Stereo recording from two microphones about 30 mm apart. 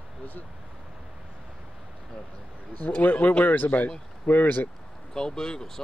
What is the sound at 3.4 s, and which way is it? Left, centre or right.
Speech, left.